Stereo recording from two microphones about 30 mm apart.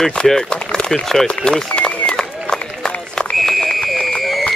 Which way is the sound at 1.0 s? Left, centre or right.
Centre.